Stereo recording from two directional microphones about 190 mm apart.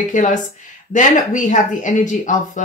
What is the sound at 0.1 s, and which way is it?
Speech, 40° left (ahead or behind).